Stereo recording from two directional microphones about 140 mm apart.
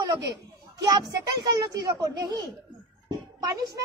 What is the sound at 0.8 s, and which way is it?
Speech, 30° right (ahead or behind).